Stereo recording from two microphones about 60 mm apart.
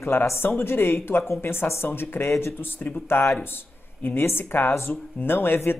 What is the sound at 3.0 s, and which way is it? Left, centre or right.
Speech, left.